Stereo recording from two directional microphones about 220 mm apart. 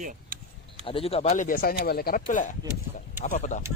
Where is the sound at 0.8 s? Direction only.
25° left (ahead or behind).